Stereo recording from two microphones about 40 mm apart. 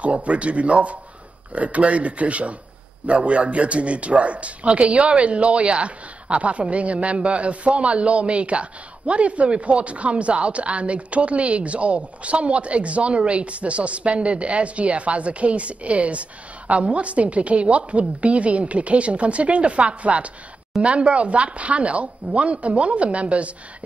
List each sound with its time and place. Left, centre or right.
0.0 s a man's voice: right